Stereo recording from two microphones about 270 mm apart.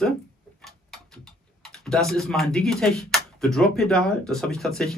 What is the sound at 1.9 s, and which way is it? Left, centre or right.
Speech, centre.